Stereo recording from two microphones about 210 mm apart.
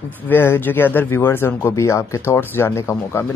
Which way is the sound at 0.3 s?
10° left (ahead or behind).